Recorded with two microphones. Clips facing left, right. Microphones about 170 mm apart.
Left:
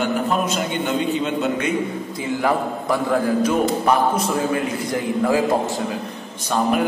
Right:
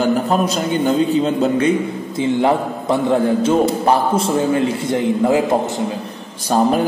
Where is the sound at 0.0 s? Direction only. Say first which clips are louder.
Right 4 dB; 35° right (ahead or behind).